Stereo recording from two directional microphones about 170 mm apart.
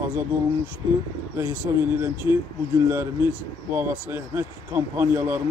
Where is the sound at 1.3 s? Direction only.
15° right (ahead or behind).